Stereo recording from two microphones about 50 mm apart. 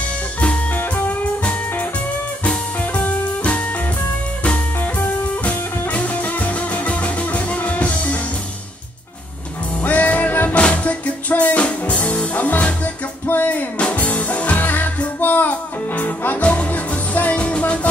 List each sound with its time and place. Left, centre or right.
0.7 s music: left
1.4 s music: left
9.8 s music: left